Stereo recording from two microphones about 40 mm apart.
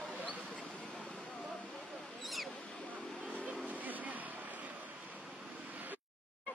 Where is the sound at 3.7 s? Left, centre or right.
Right.